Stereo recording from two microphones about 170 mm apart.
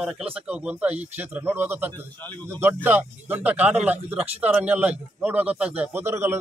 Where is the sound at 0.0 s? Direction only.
5° right (ahead or behind).